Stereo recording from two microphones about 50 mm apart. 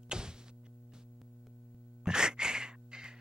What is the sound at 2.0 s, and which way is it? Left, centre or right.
Gasp, centre.